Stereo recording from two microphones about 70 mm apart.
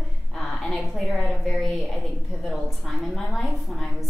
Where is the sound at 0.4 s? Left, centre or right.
Centre.